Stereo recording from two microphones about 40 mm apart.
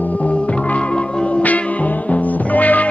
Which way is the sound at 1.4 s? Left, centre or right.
Left.